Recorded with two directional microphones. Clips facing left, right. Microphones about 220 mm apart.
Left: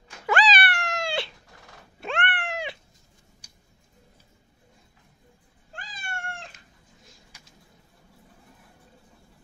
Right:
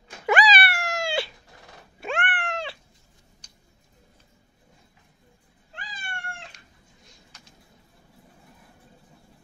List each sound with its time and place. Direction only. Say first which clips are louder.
0.3 s cat: right 2 dB; 10° right (ahead or behind)
3.4 s a sound: even; 10° left (ahead or behind)
5.7 s cat: left 1 dB; 50° left (ahead or behind)